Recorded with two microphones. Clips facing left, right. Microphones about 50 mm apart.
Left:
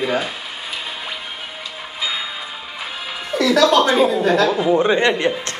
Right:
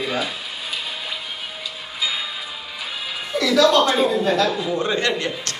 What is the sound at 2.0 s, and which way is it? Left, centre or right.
Bell, left.